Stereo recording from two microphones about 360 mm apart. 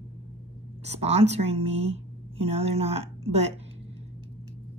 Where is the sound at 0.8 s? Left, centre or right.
Centre.